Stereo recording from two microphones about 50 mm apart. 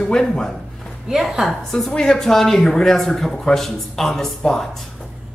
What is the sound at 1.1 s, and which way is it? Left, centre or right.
A man's voice, centre.